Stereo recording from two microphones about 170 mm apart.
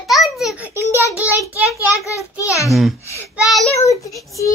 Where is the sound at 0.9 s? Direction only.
10° right (ahead or behind).